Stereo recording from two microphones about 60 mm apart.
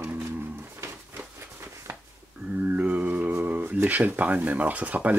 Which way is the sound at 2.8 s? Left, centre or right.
Right.